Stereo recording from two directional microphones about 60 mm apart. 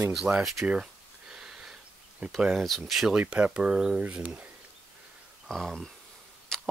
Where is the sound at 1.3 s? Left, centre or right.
Centre.